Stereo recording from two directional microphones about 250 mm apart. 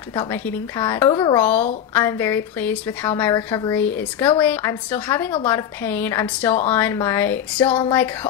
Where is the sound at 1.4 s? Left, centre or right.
Centre.